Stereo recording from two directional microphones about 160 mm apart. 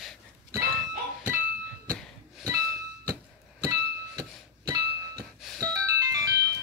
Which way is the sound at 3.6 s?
20° right (ahead or behind).